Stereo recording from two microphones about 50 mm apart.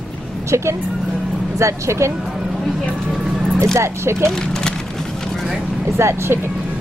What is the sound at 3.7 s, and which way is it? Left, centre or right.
Speech, right.